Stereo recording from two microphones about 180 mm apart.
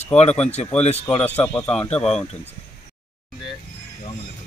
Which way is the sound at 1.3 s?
10° left (ahead or behind).